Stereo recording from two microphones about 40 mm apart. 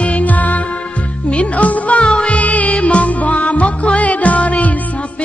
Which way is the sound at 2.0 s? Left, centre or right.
Left.